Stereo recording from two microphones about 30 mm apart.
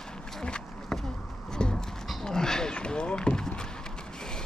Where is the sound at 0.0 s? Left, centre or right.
Left.